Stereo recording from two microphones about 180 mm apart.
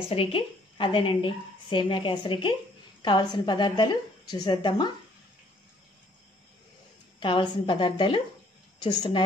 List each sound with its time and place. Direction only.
0.1 s a woman's voice: 30° left (ahead or behind)
7.2 s a woman's voice: 25° left (ahead or behind)